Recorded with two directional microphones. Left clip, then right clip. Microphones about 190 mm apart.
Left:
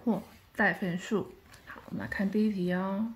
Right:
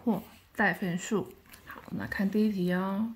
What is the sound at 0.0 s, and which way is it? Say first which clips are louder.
A woman's voice: even; 10° right (ahead or behind).